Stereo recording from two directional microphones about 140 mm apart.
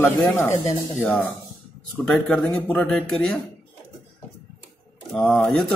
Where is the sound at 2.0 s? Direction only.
5° left (ahead or behind).